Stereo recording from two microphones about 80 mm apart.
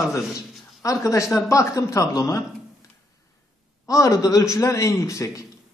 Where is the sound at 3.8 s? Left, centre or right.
Left.